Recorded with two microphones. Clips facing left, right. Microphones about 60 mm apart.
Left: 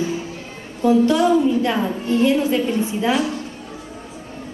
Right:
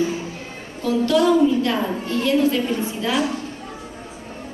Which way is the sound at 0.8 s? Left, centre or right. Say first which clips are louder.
Left 2 dB; left.